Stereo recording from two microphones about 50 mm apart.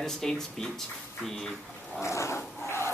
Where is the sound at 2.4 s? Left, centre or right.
Left.